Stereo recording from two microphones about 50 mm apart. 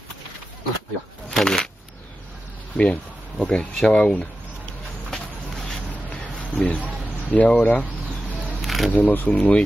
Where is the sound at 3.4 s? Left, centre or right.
Left.